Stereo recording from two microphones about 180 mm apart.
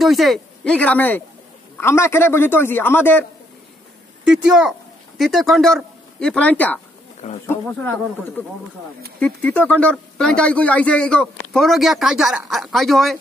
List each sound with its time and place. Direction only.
0.0 s a man's voice: centre (ahead or behind)
4.2 s a man's voice: 5° right (ahead or behind)
9.2 s speech: 5° left (ahead or behind)